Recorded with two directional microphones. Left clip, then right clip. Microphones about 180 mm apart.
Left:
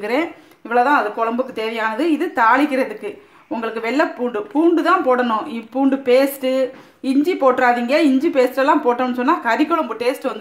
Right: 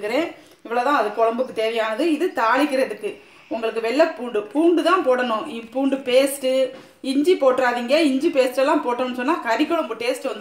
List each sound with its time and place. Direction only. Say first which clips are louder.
0.0 s a woman's voice: left 2 dB; 50° left (ahead or behind)